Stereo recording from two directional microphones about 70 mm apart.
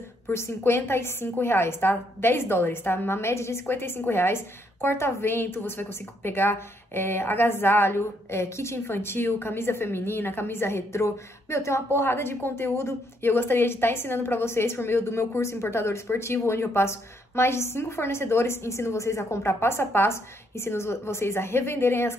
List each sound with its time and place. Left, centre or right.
0.3 s a woman's voice: left